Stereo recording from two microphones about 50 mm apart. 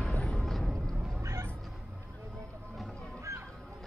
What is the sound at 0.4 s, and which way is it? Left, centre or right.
Music, centre.